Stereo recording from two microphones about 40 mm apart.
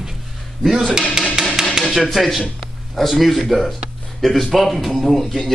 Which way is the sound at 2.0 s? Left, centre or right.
Centre.